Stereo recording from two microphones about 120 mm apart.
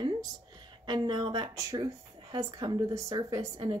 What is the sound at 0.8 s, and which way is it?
Speech, 35° right (ahead or behind).